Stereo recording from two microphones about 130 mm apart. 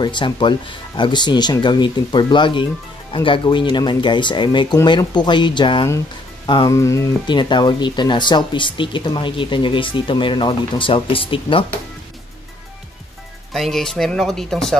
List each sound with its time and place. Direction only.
0.0 s speech: 35° left (ahead or behind)
6.7 s speech: 25° left (ahead or behind)
7.2 s speech: 35° left (ahead or behind)
13.5 s speech: centre (ahead or behind)